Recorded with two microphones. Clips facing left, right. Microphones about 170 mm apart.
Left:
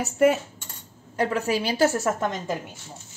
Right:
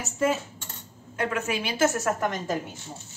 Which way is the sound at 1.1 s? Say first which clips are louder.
Left 4 dB; 35° left (ahead or behind).